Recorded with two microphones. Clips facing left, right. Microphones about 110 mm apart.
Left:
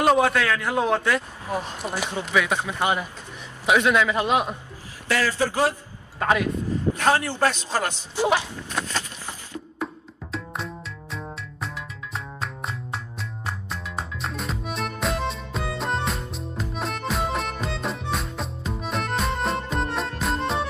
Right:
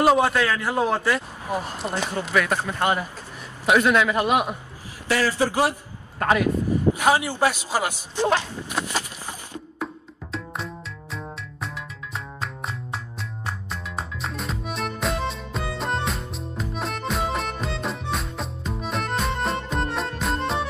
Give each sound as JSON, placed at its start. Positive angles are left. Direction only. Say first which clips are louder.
{"t": 0.0, "sound": "a man's voice", "louder": "right 1 dB", "side_deg": -5}
{"t": 1.8, "sound": "a man's voice", "louder": "right 2 dB", "side_deg": 5}
{"t": 6.1, "sound": "speech", "louder": "right 1 dB", "side_deg": 0}
{"t": 7.0, "sound": "a man's voice", "louder": "left 2 dB", "side_deg": -10}
{"t": 8.2, "sound": "speech", "louder": "even", "side_deg": 10}
{"t": 8.6, "sound": "a sound", "louder": "right 1 dB", "side_deg": -10}
{"t": 9.8, "sound": "music", "louder": "even", "side_deg": 0}